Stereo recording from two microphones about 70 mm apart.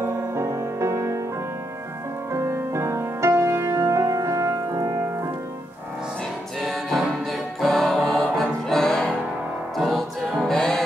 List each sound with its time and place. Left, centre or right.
0.0 s music: right
2.3 s music: right
6.6 s music: centre